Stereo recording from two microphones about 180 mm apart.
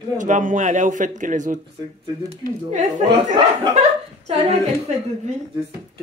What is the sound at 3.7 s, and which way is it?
Chuckle, 35° right (ahead or behind).